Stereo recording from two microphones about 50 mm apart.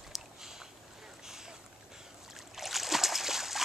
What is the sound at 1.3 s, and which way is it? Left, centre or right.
Boat, centre.